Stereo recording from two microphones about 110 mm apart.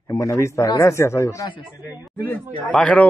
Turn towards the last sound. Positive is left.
turn(degrees=10)  # may be behind; listen again after turning